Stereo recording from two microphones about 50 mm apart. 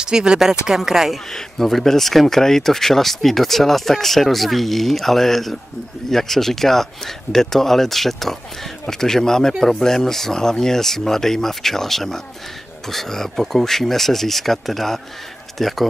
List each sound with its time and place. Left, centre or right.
0.0 s speech: centre
1.3 s speech: centre